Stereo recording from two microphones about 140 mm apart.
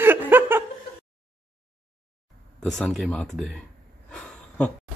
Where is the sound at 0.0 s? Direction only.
15° right (ahead or behind).